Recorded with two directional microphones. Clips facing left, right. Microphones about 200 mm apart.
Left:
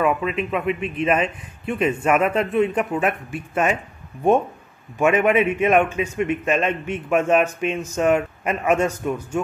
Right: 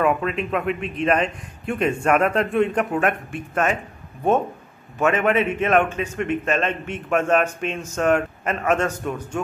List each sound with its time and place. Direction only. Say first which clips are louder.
0.0 s a man's voice: even; 5° left (ahead or behind)
4.9 s a man's voice: left 2 dB; 10° left (ahead or behind)